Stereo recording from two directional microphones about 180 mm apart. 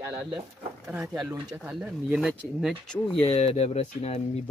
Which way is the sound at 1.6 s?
5° right (ahead or behind).